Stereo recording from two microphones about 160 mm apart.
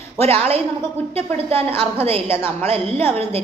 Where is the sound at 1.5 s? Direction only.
15° left (ahead or behind).